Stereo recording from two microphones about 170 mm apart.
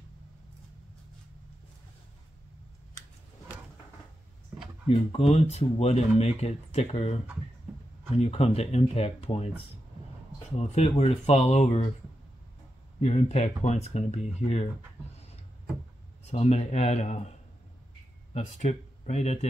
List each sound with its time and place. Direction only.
4.8 s speech: 35° left (ahead or behind)
10.6 s speech: 40° left (ahead or behind)
13.0 s speech: 40° left (ahead or behind)
16.3 s speech: 40° left (ahead or behind)
18.3 s speech: 40° left (ahead or behind)